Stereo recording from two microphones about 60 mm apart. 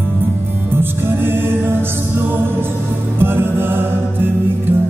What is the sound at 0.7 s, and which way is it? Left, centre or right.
Music, right.